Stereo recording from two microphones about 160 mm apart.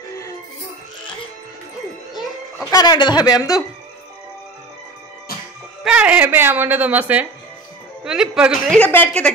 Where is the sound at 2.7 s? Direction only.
25° left (ahead or behind).